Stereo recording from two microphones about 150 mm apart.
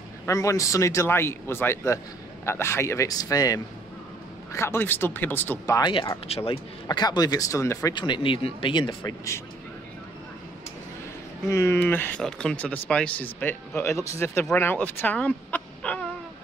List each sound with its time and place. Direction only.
0.3 s a man's voice: 20° left (ahead or behind)
5.8 s speech: 30° left (ahead or behind)
6.9 s a man's voice: 25° left (ahead or behind)
7.9 s speech: 30° left (ahead or behind)
11.4 s speech: 20° left (ahead or behind)